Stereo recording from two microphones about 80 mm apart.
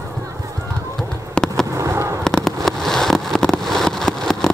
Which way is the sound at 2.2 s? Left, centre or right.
Centre.